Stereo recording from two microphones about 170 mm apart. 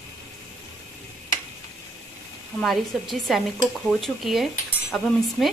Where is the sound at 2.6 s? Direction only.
Centre (ahead or behind).